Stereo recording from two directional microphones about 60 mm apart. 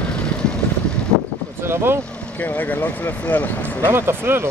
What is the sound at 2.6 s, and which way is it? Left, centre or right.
Speech, left.